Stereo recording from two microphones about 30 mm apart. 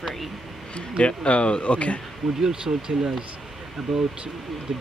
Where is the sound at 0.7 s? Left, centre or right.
Left.